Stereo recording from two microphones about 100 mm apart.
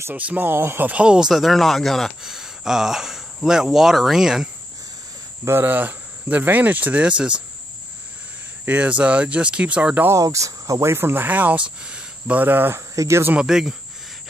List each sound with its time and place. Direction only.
0.0 s speech: 15° right (ahead or behind)
5.4 s speech: 25° right (ahead or behind)
8.6 s speech: 15° right (ahead or behind)
10.0 s speech: 30° right (ahead or behind)
13.3 s speech: 5° right (ahead or behind)